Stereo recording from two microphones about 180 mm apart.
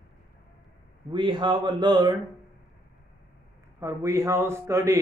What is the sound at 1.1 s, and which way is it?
Speech, 25° right (ahead or behind).